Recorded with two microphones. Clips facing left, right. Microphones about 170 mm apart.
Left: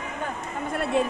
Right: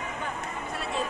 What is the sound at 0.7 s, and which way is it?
Run, 55° left (ahead or behind).